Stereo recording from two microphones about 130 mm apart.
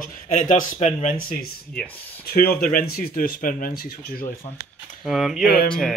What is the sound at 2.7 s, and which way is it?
Speech, 90° left.